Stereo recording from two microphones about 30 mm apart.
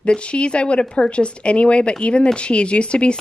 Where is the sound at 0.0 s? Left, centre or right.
Left.